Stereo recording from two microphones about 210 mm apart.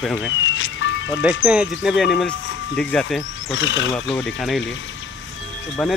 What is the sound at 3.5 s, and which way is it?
Speech, 60° left (ahead or behind).